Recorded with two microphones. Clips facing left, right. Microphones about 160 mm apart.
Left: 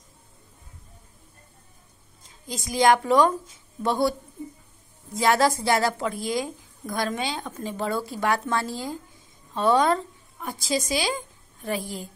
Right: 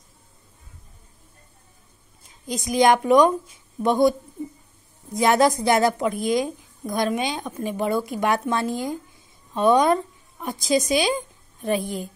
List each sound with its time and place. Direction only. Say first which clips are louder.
2.4 s speech: right 2 dB; 20° right (ahead or behind)
5.1 s a woman's voice: right 3 dB; 20° right (ahead or behind)